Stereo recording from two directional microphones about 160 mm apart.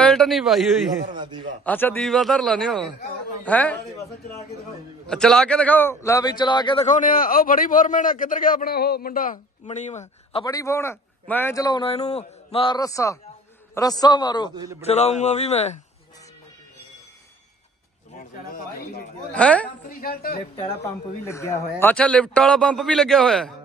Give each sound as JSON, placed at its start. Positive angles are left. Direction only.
{"t": 0.0, "sound": "a man's voice", "side_deg": 5}
{"t": 1.1, "sound": "a man's voice", "side_deg": -30}
{"t": 1.6, "sound": "a man's voice", "side_deg": 10}
{"t": 5.1, "sound": "speech", "side_deg": 5}
{"t": 6.9, "sound": "a man's voice", "side_deg": 60}
{"t": 10.4, "sound": "a man's voice", "side_deg": 20}
{"t": 14.8, "sound": "speech", "side_deg": 40}
{"t": 18.1, "sound": "a sound", "side_deg": 55}
{"t": 19.3, "sound": "speech", "side_deg": 10}
{"t": 19.9, "sound": "a woman's voice", "side_deg": 65}
{"t": 20.8, "sound": "a man's voice", "side_deg": 20}